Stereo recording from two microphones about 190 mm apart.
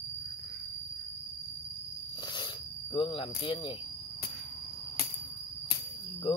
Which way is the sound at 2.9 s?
25° left (ahead or behind).